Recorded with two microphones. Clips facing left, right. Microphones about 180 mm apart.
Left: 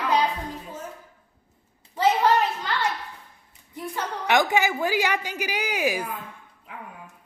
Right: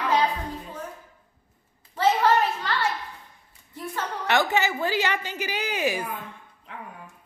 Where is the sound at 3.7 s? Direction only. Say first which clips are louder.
Left 1 dB; 15° left (ahead or behind).